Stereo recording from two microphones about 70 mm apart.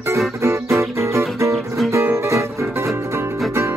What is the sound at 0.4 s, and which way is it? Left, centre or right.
Music, right.